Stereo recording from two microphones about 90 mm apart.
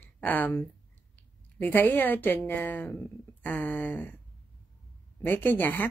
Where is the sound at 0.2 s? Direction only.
20° left (ahead or behind).